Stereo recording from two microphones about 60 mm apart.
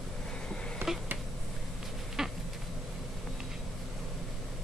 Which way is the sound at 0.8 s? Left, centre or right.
Right.